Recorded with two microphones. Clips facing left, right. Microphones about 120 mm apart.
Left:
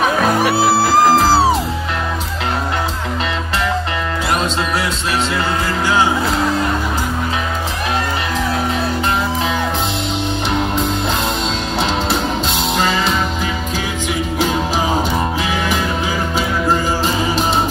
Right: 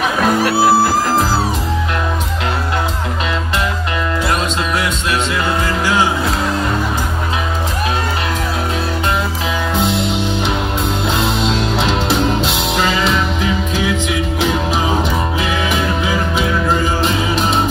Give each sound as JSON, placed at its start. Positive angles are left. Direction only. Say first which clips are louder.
{"t": 0.4, "sound": "music", "louder": "right 2 dB", "side_deg": 0}
{"t": 16.3, "sound": "music", "louder": "left 1 dB", "side_deg": 35}